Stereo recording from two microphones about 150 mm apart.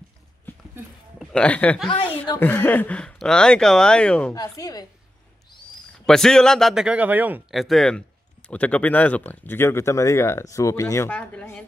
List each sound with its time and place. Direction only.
1.2 s speech: 5° left (ahead or behind)
4.3 s a woman's voice: 25° left (ahead or behind)
6.0 s speech: 5° left (ahead or behind); by 7.4 s 10° right (ahead or behind)
7.5 s speech: centre (ahead or behind); by 11.1 s 20° left (ahead or behind)
11.1 s speech: 10° left (ahead or behind)